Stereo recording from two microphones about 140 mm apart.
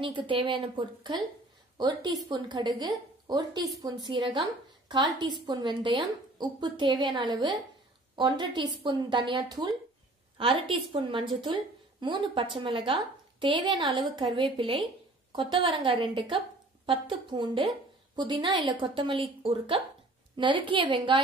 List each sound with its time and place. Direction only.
0.0 s a woman's voice: 35° right (ahead or behind)